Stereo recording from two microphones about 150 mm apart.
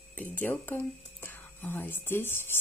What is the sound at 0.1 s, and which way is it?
Speech, 10° left (ahead or behind).